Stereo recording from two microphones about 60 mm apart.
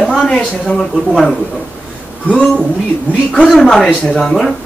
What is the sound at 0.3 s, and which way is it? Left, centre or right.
Speech, centre.